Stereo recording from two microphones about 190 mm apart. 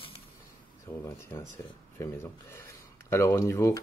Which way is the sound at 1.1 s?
15° left (ahead or behind).